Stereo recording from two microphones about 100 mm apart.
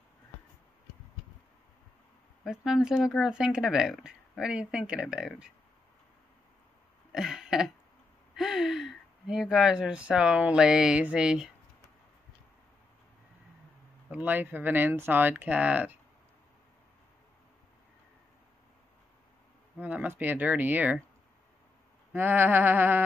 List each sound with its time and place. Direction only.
2.4 s speech: 5° right (ahead or behind)
7.1 s throat clearing: 5° right (ahead or behind)
8.4 s speech: 5° right (ahead or behind)
14.1 s speech: 20° right (ahead or behind)
19.8 s speech: 15° right (ahead or behind)
22.1 s speech: 20° right (ahead or behind)